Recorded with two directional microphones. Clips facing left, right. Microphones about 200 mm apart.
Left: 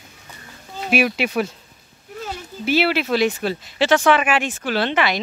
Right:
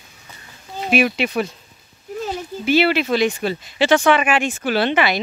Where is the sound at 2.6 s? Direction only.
5° left (ahead or behind).